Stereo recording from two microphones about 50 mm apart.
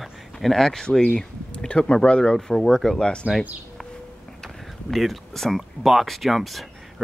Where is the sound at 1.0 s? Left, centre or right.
Left.